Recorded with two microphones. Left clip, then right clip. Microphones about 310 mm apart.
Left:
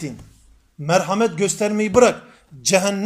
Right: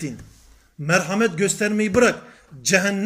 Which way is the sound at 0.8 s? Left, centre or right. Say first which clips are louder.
Left 2 dB; left.